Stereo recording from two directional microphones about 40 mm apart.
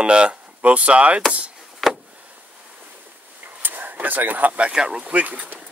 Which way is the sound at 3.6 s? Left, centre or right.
Right.